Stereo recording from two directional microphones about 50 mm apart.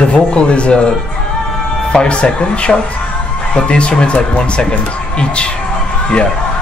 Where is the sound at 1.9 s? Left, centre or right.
Left.